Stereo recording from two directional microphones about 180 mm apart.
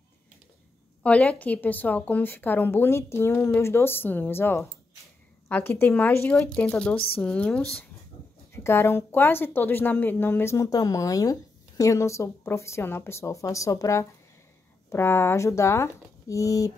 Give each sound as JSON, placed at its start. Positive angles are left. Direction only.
{"t": 1.0, "sound": "a woman's voice", "side_deg": 5}